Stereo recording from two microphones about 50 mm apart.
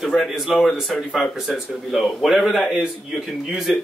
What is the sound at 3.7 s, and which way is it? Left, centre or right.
Speech, centre.